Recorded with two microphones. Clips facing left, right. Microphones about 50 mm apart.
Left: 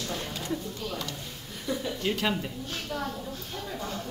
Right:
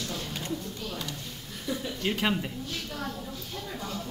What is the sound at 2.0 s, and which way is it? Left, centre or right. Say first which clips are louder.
Speech: right 1 dB; centre.